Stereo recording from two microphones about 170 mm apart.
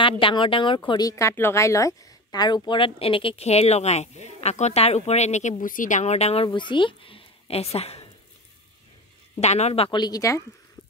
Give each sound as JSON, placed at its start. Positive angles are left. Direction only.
{"t": 0.0, "sound": "speech", "side_deg": 30}
{"t": 9.4, "sound": "speech", "side_deg": 40}